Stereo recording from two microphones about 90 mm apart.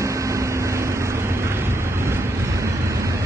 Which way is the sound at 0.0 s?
35° right (ahead or behind).